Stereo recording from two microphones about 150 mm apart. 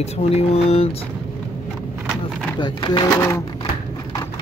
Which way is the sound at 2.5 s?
30° left (ahead or behind).